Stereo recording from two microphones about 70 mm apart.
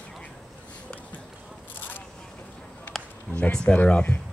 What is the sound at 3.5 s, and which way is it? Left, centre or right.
Speech, centre.